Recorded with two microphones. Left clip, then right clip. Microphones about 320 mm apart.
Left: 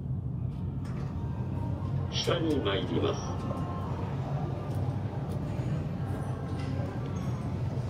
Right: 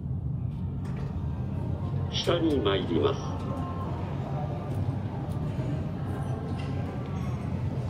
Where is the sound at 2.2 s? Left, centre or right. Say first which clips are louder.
Right 4 dB; centre.